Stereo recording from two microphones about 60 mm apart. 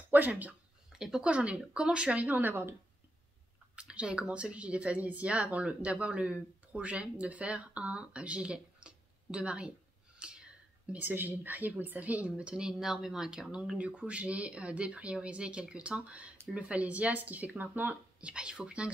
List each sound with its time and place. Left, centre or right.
0.1 s a woman's voice: right
0.9 s speech: centre
1.2 s a woman's voice: right
3.7 s a woman's voice: centre
10.9 s a woman's voice: right
18.2 s speech: centre